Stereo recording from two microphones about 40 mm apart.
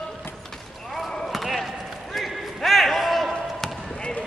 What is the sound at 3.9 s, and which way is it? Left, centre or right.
Basketball bounce, left.